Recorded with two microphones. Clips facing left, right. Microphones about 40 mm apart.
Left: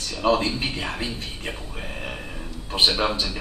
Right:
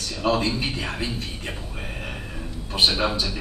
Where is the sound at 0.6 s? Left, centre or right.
Left.